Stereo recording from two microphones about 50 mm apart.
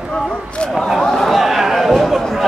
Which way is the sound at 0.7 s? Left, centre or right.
Centre.